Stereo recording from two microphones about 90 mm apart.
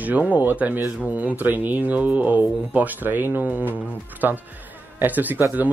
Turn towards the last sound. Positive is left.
turn(degrees=-20)  # may be behind; listen again after turning